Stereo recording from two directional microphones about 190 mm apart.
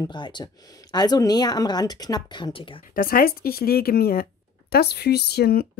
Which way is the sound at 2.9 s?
50° left (ahead or behind).